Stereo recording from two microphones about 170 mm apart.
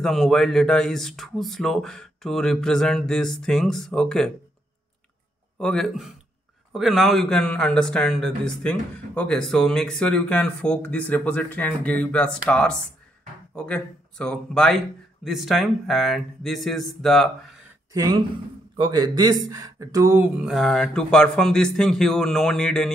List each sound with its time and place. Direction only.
0.0 s speech: centre (ahead or behind)
5.6 s speech: 5° left (ahead or behind)
17.9 s a man's voice: 20° right (ahead or behind); by 22.8 s 5° left (ahead or behind)